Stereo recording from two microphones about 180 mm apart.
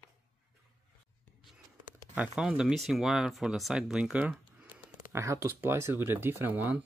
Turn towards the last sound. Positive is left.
turn(degrees=-10)  # may be behind; listen again after turning